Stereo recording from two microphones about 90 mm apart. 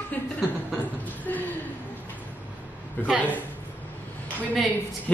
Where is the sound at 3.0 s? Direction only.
20° left (ahead or behind).